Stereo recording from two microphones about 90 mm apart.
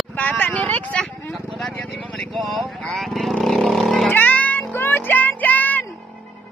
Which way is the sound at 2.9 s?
Centre (ahead or behind).